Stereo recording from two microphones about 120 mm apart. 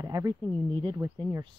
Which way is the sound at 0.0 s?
30° right (ahead or behind).